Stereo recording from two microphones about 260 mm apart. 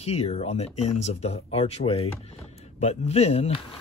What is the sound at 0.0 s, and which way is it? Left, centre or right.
Speech, left.